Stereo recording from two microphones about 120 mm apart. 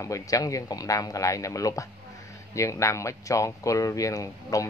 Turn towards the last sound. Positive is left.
turn(degrees=30)  # may be behind; listen again after turning